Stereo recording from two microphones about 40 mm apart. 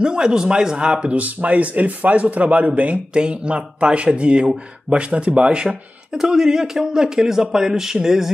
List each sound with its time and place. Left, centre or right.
0.0 s speech: centre
1.1 s speech: right
5.7 s speech: centre